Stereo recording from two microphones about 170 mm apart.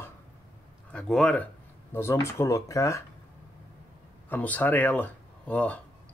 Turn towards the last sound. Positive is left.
turn(degrees=10)  # may be behind; listen again after turning